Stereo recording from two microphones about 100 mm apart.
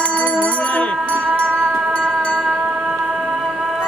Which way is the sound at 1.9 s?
10° left (ahead or behind).